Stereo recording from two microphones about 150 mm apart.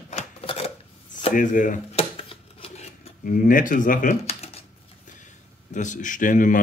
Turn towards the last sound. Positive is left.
turn(degrees=60)  # may be behind; listen again after turning